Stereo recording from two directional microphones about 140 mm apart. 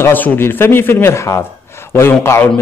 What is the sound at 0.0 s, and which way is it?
A woman's voice, 15° left (ahead or behind).